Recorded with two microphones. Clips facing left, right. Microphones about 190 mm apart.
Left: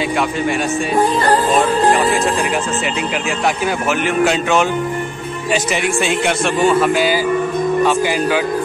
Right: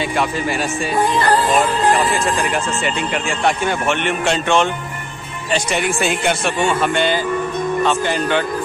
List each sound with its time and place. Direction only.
1.0 s speech: 35° left (ahead or behind)
2.0 s speech: centre (ahead or behind)